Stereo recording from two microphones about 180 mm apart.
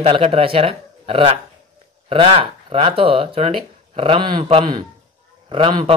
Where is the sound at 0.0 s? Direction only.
30° right (ahead or behind).